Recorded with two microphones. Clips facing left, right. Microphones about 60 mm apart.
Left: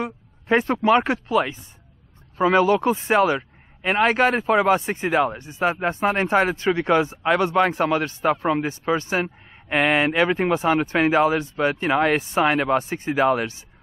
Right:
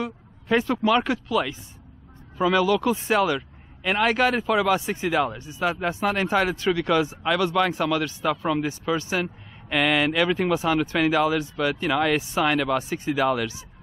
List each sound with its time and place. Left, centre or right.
0.0 s a man's voice: left